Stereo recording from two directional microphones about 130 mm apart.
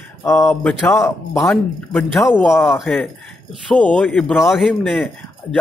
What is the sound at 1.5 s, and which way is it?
A man's voice, 5° left (ahead or behind).